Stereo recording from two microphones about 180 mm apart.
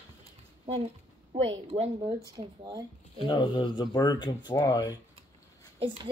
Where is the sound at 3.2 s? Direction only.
25° left (ahead or behind).